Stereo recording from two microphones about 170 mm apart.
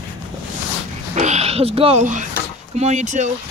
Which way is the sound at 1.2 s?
40° right (ahead or behind).